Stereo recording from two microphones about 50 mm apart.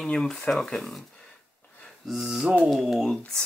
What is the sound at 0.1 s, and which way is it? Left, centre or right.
Speech, centre.